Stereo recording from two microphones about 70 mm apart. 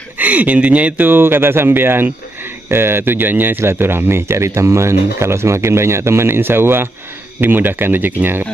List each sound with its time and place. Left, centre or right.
0.2 s speech: right